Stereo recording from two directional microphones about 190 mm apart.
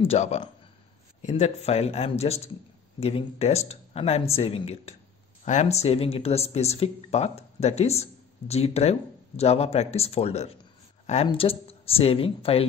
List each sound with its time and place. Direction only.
0.0 s speech: 35° left (ahead or behind)